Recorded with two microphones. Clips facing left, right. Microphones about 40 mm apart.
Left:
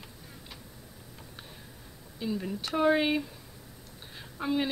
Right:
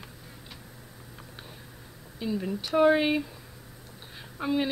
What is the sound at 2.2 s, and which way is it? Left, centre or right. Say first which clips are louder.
Speech: right 2 dB; centre.